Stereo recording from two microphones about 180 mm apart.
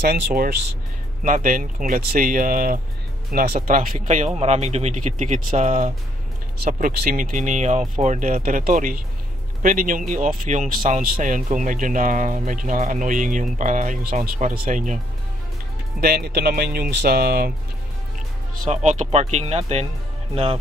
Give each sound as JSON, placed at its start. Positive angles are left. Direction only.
{"t": 0.0, "sound": "speech", "side_deg": -60}
{"t": 6.6, "sound": "speech", "side_deg": -55}
{"t": 16.0, "sound": "speech", "side_deg": -60}
{"t": 18.6, "sound": "speech", "side_deg": -40}